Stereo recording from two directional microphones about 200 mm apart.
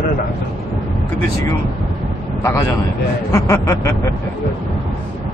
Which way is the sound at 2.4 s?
15° left (ahead or behind).